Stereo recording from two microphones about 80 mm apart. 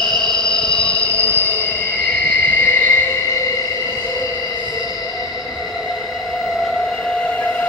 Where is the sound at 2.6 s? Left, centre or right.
Left.